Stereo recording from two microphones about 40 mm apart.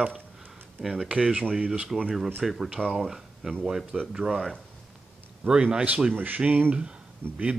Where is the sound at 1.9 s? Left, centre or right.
Right.